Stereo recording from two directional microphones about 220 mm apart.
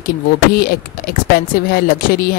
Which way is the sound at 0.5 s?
45° left (ahead or behind).